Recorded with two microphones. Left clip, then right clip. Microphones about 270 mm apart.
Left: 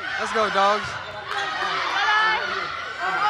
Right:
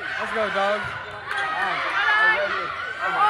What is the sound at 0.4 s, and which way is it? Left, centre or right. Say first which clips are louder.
Speech: left 4 dB; centre.